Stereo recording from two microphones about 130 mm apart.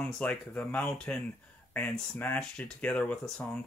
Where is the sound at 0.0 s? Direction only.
10° left (ahead or behind).